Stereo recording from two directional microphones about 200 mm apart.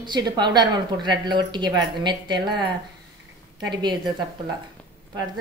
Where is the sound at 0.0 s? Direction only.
20° right (ahead or behind).